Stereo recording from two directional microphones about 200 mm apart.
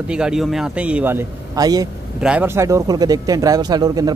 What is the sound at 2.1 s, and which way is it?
Speech, 5° right (ahead or behind).